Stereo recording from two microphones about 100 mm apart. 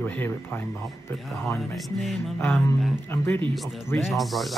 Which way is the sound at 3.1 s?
25° left (ahead or behind).